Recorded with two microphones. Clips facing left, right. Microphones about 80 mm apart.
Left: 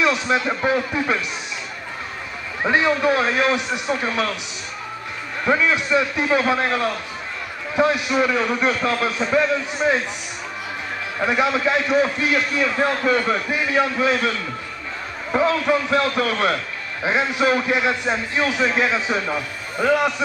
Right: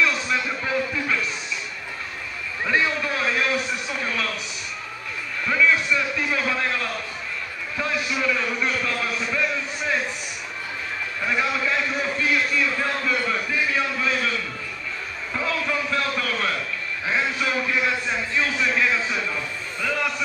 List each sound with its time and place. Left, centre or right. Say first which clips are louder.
0.0 s a sound: left 4 dB; centre
0.5 s a man's voice: left 5 dB; left
2.7 s a man's voice: left 6 dB; left
5.4 s a man's voice: left 2 dB; left
11.1 s a man's voice: left 5 dB; left
15.3 s a man's voice: left 8 dB; left
19.2 s a man's voice: left 4 dB; left
19.9 s a man's voice: left 8 dB; centre